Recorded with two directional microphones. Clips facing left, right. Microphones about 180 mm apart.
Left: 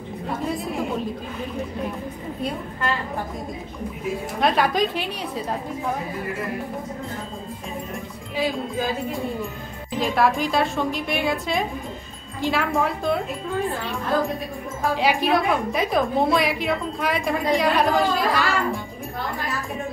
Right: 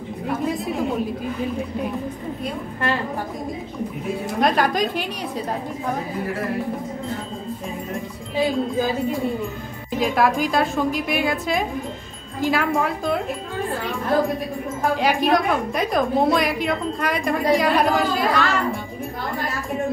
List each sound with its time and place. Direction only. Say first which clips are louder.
4.4 s a woman's voice: right 1 dB; centre (ahead or behind)
9.9 s a woman's voice: right 1 dB; centre (ahead or behind)
15.0 s a woman's voice: right 1 dB; centre (ahead or behind)